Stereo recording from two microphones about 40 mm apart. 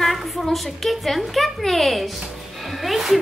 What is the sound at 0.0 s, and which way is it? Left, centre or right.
A woman's voice, centre.